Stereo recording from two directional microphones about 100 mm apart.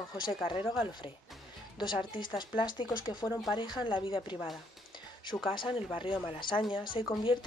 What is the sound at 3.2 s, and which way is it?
Speech, 25° left (ahead or behind).